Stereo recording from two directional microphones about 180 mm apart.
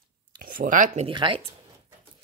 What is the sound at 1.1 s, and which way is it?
Speech, 25° right (ahead or behind).